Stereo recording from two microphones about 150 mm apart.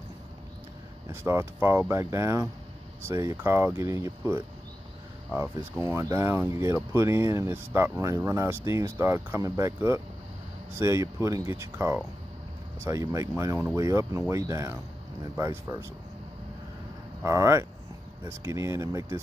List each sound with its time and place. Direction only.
1.1 s speech: 15° right (ahead or behind)
17.2 s speech: 20° right (ahead or behind)